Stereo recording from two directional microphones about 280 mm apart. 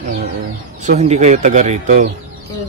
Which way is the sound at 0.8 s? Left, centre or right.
Right.